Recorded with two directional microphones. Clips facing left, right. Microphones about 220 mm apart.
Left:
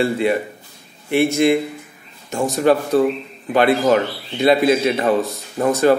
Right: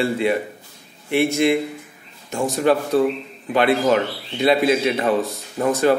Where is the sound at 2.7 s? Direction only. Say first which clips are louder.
Left 2 dB; 40° left (ahead or behind).